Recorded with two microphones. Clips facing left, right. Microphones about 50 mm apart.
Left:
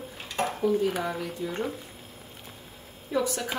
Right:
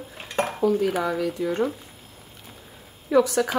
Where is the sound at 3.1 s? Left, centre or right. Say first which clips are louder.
Right 9 dB; right.